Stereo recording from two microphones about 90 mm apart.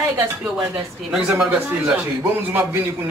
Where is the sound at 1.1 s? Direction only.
10° right (ahead or behind).